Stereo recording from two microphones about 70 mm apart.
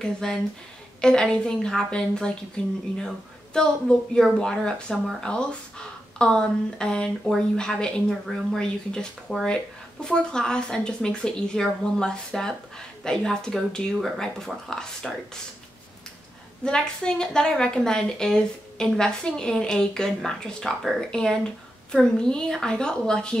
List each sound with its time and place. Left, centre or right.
0.0 s speech: centre
9.3 s speech: centre
16.6 s speech: centre